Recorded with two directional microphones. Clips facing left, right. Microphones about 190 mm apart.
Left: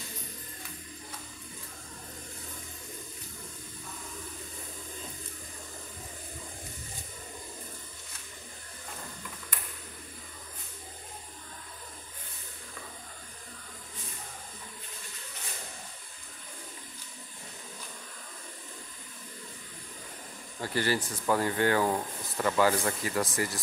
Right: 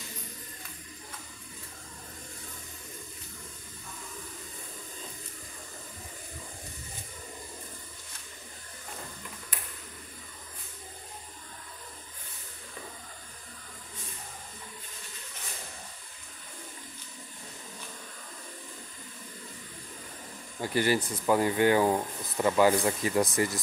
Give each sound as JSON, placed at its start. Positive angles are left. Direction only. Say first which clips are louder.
{"t": 20.6, "sound": "speech", "louder": "right 3 dB", "side_deg": -15}